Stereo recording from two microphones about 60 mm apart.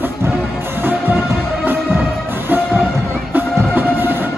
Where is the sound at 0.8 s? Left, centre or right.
Right.